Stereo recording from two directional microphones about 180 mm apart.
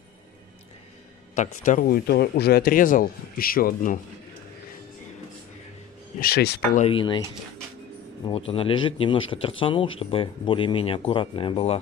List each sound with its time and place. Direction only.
1.3 s a man's voice: 45° left (ahead or behind)
6.1 s speech: 60° left (ahead or behind)
6.9 s speech: 30° left (ahead or behind)
8.3 s speech: 30° left (ahead or behind)